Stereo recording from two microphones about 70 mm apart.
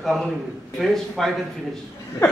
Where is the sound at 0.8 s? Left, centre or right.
Centre.